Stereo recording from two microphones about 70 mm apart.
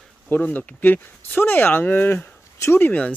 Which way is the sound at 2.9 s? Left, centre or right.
Left.